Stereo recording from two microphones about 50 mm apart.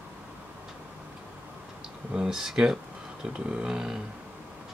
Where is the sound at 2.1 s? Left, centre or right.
Centre.